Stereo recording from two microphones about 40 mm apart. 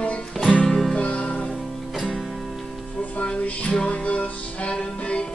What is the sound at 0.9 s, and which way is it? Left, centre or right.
Music, left.